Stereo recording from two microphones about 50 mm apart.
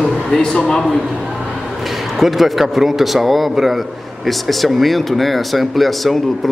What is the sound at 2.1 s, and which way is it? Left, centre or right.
Speech, centre.